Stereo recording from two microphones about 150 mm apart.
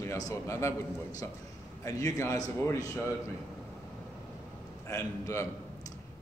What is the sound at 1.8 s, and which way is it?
A man's voice, 20° left (ahead or behind).